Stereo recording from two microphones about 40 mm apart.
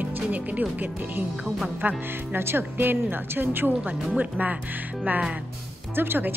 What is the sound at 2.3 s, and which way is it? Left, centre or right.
Speech, right.